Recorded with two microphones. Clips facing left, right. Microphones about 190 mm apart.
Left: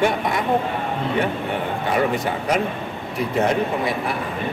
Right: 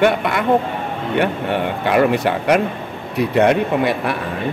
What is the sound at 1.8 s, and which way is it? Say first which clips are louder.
Speech: right 6 dB; 70° right (ahead or behind).